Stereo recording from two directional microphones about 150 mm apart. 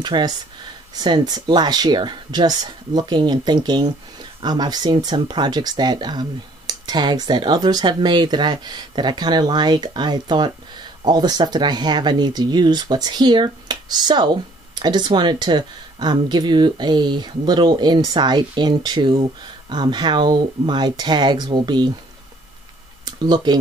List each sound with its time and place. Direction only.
0.0 s speech: 30° right (ahead or behind)
23.0 s speech: 30° right (ahead or behind)